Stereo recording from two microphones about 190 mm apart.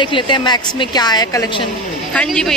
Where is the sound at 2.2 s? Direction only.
5° left (ahead or behind).